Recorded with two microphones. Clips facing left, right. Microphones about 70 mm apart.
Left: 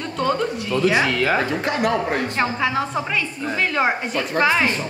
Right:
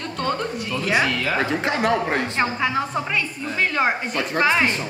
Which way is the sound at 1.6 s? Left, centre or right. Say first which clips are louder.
Even; right.